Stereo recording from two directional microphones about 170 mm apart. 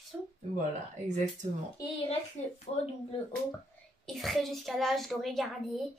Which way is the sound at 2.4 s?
45° left (ahead or behind).